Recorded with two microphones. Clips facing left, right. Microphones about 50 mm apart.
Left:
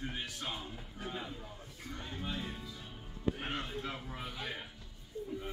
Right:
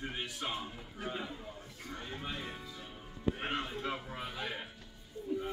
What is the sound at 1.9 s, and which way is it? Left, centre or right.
Music, centre.